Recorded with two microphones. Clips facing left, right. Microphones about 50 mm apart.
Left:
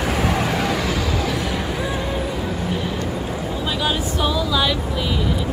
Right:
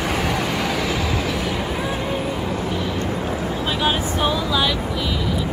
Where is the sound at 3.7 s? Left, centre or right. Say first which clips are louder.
Right 1 dB; centre.